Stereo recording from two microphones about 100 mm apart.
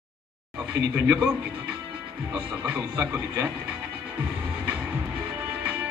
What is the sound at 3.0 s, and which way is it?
Speech, 25° right (ahead or behind).